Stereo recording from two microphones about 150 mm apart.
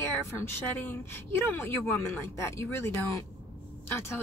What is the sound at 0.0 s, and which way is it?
Speech, 15° left (ahead or behind).